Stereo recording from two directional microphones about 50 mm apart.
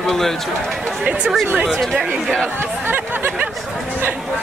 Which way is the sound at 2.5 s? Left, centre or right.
Right.